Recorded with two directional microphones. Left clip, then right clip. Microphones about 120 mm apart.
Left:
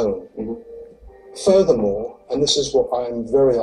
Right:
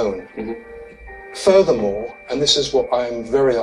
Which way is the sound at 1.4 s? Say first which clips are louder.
Right 1 dB; 25° right (ahead or behind).